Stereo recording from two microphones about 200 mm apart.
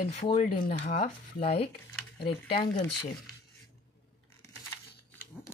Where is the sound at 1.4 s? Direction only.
30° left (ahead or behind).